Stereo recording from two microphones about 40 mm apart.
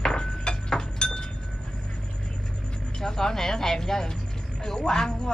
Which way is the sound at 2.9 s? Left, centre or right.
Centre.